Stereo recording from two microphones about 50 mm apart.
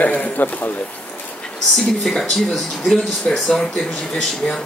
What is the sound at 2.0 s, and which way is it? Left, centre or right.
Speech, centre.